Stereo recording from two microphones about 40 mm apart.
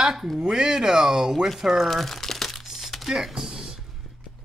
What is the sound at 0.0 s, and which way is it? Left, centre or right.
Speech, centre.